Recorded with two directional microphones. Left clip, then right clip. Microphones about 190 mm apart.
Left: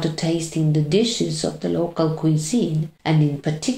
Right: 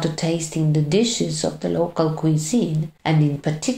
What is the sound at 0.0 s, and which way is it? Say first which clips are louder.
Speech: even; 25° right (ahead or behind).